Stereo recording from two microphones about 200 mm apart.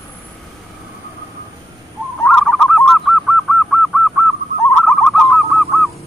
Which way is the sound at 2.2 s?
Centre (ahead or behind).